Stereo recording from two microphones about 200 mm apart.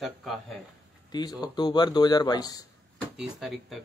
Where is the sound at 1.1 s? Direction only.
20° left (ahead or behind).